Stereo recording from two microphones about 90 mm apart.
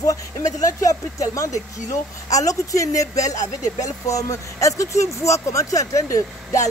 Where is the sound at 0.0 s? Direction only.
40° left (ahead or behind).